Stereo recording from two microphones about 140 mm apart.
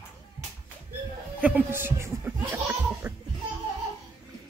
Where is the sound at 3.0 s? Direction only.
10° right (ahead or behind).